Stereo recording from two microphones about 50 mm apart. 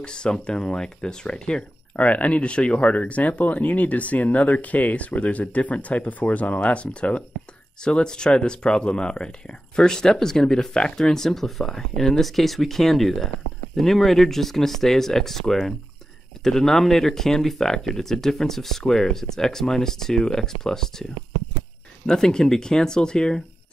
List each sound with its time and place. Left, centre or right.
0.0 s speech: centre
22.0 s speech: centre